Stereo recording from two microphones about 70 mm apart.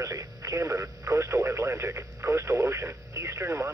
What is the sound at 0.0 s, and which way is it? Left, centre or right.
Speech, right.